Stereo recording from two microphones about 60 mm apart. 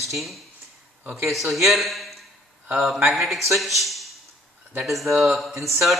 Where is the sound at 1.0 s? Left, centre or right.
Right.